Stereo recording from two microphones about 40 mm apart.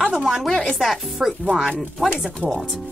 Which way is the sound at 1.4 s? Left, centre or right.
Right.